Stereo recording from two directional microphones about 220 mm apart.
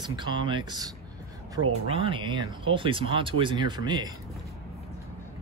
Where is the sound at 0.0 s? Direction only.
20° right (ahead or behind).